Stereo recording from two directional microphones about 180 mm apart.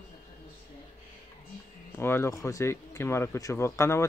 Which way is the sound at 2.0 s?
15° left (ahead or behind).